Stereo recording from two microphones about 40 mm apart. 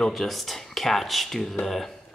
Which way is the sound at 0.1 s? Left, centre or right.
Centre.